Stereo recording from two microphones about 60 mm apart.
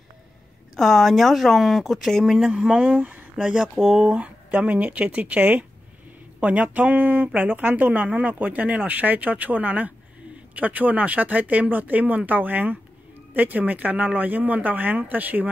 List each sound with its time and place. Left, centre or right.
0.7 s speech: centre
2.3 s speech: centre
3.7 s speech: centre
4.0 s speech: centre